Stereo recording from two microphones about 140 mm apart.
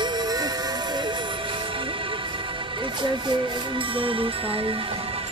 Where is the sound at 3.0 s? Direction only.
35° right (ahead or behind).